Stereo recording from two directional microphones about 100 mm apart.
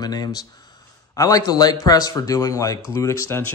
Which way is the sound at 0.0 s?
40° left (ahead or behind).